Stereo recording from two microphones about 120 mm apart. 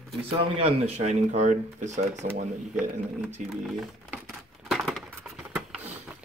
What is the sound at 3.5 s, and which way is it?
Speech, 5° right (ahead or behind).